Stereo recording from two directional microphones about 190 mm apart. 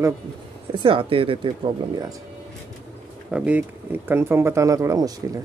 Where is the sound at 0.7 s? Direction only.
25° right (ahead or behind).